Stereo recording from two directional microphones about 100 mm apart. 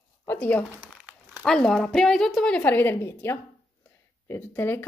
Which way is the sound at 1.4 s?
5° left (ahead or behind).